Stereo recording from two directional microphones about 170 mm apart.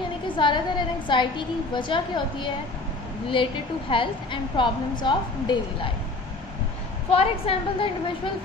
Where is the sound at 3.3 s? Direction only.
30° left (ahead or behind).